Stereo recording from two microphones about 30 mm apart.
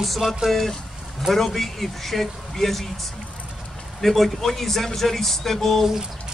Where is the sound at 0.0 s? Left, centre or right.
Centre.